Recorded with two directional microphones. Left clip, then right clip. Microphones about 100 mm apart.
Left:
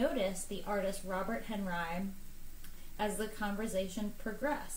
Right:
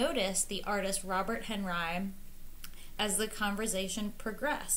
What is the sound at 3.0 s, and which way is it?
Speech, 20° right (ahead or behind).